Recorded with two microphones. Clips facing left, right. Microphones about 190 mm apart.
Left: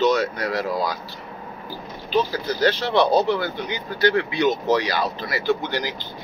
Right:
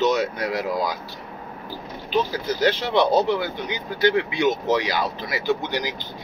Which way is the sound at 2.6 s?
20° right (ahead or behind).